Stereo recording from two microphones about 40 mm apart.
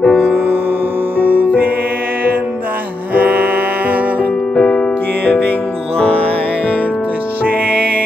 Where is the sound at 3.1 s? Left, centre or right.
Right.